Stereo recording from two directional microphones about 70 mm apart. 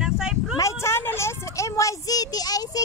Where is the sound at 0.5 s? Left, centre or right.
Left.